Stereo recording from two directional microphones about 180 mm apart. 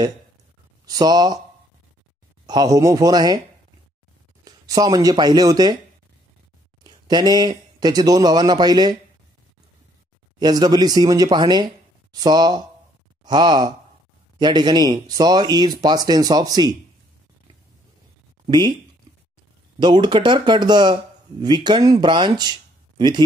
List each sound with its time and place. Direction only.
0.8 s speech: 20° right (ahead or behind)
2.4 s speech: 20° right (ahead or behind)
4.5 s speech: 20° right (ahead or behind)
6.8 s speech: 20° right (ahead or behind)
10.4 s speech: 20° right (ahead or behind)
19.8 s speech: 25° right (ahead or behind)